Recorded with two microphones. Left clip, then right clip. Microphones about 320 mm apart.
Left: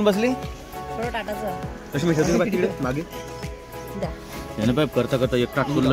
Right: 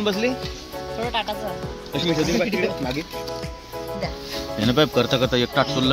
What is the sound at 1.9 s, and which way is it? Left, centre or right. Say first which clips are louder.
Speech: left 1 dB; left.